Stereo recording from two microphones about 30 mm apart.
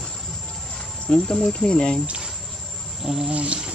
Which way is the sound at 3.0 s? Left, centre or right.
Centre.